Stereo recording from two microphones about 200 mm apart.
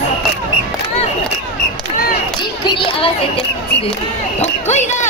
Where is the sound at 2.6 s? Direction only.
25° left (ahead or behind).